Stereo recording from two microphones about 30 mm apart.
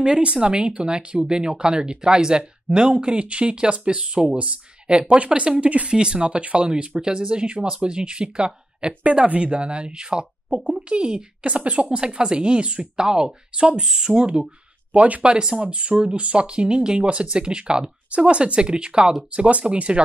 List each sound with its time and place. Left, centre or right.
0.0 s speech: right
0.8 s speech: right
9.0 s speech: right
13.8 s speech: centre
14.1 s speech: right
14.9 s speech: right
15.3 s speech: right
15.6 s speech: right